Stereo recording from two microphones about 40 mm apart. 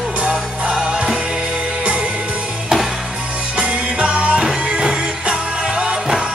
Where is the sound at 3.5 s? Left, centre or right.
Right.